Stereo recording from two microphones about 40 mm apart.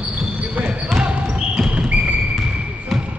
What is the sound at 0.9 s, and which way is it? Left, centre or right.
Basketball bounce, right.